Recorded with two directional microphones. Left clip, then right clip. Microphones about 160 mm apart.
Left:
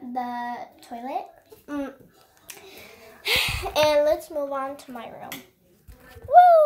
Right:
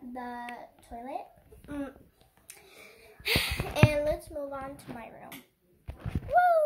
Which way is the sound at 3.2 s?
20° right (ahead or behind).